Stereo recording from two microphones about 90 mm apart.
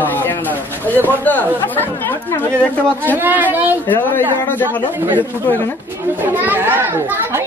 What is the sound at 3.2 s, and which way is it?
Speech, 20° right (ahead or behind).